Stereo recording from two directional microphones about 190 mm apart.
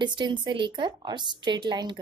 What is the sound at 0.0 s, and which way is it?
A woman's voice, 25° right (ahead or behind).